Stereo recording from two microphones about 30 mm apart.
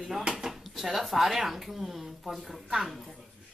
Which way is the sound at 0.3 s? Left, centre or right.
Centre.